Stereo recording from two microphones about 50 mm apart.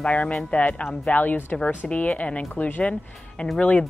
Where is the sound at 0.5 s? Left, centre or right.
Left.